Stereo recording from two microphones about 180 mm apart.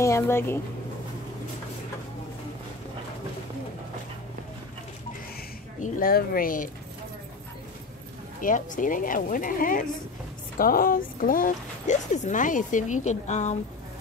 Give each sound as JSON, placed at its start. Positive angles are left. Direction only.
{"t": 0.0, "sound": "speech", "side_deg": 15}
{"t": 5.8, "sound": "speech", "side_deg": 50}
{"t": 8.4, "sound": "speech", "side_deg": 45}